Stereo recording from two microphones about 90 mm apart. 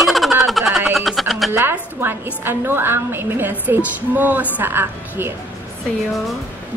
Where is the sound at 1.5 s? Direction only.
25° right (ahead or behind).